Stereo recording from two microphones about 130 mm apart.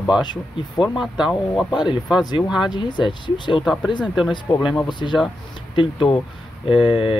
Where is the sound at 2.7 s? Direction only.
35° left (ahead or behind).